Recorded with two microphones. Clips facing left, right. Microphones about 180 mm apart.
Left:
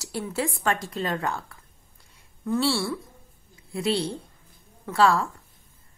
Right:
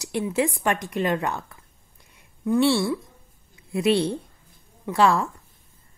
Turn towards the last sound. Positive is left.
turn(degrees=-20)  # may be behind; listen again after turning